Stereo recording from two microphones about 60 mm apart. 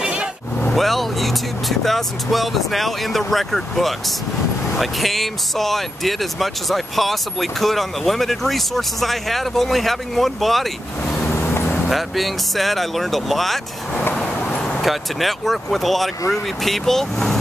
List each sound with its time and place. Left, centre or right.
0.0 s vehicle: centre
0.7 s speech: centre
11.2 s vehicle: left
11.9 s speech: centre
14.1 s vehicle: centre
14.8 s speech: centre